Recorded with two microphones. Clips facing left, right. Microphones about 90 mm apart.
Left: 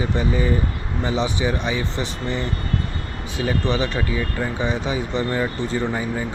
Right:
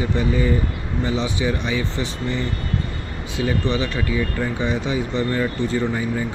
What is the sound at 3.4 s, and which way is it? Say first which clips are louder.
Speech: even; 25° left (ahead or behind).